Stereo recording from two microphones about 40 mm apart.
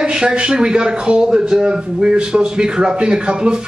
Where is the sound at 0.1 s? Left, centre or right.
Right.